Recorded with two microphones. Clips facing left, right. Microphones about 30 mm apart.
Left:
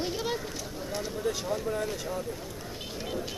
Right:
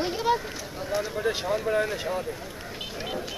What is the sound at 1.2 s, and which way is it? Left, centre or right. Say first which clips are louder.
A man's voice: right 2 dB; right.